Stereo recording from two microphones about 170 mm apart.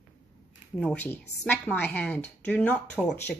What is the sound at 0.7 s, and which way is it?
A woman's voice, 10° left (ahead or behind).